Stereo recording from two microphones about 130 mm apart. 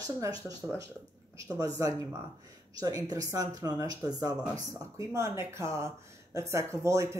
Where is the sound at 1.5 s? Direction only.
30° right (ahead or behind).